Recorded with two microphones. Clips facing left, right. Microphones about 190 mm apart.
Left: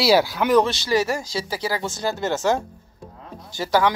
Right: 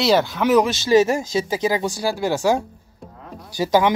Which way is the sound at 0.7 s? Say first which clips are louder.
Right 6 dB; 20° right (ahead or behind).